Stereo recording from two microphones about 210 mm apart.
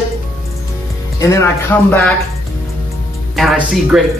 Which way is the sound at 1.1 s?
15° left (ahead or behind).